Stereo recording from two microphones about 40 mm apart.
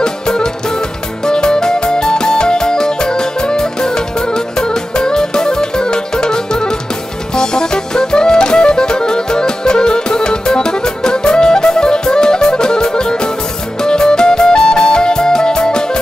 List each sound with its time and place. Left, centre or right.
0.0 s music: centre